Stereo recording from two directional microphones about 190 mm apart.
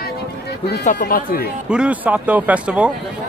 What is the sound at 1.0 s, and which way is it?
Speech, 50° left (ahead or behind).